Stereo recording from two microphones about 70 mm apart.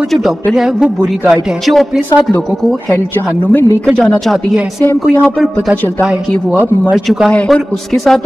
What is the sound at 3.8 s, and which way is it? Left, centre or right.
Speech, centre.